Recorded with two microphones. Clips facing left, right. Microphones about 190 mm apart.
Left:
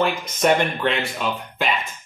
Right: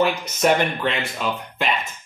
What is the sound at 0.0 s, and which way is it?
Speech, centre (ahead or behind).